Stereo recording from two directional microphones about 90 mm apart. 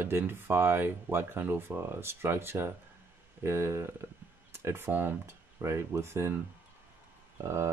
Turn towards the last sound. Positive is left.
turn(degrees=-30)  # may be behind; listen again after turning